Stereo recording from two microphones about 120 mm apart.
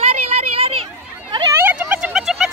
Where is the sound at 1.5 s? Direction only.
15° right (ahead or behind).